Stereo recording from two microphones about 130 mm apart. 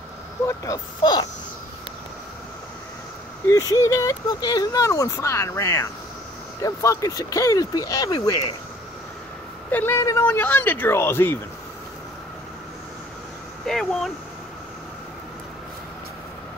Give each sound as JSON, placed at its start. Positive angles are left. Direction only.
{"t": 0.5, "sound": "speech", "side_deg": 30}
{"t": 3.4, "sound": "speech", "side_deg": 25}
{"t": 9.7, "sound": "speech", "side_deg": 15}
{"t": 13.7, "sound": "speech", "side_deg": 5}